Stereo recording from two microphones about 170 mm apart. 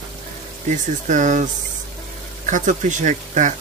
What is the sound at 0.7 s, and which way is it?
Speech, 45° right (ahead or behind).